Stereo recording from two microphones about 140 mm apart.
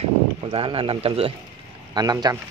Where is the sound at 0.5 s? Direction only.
40° right (ahead or behind).